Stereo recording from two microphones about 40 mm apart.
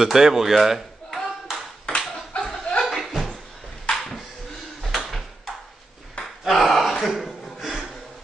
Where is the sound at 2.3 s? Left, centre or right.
Left.